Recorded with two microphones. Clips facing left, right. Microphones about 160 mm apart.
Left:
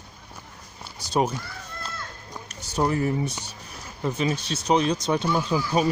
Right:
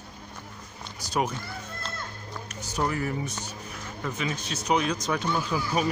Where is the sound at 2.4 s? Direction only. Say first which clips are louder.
Left 4 dB; 30° left (ahead or behind).